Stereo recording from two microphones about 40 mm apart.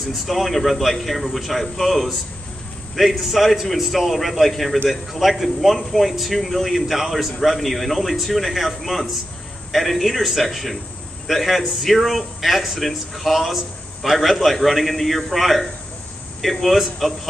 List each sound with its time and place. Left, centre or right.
0.3 s a man's voice: centre
3.2 s a man's voice: centre